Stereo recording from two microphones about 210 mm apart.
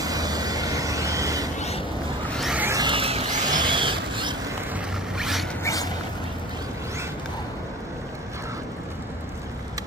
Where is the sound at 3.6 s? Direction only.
25° right (ahead or behind).